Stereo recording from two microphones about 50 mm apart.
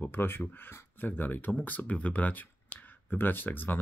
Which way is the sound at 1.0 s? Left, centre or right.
Left.